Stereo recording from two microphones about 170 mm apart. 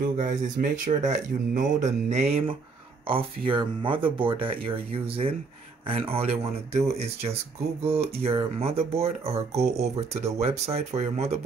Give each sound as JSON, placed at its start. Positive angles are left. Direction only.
{"t": 0.0, "sound": "speech", "side_deg": -50}